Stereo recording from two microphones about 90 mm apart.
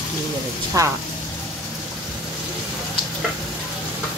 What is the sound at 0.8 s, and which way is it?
Speech, 40° right (ahead or behind).